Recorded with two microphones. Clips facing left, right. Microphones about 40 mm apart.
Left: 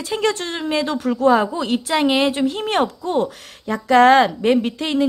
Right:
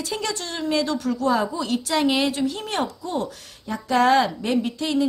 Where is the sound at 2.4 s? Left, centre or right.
Left.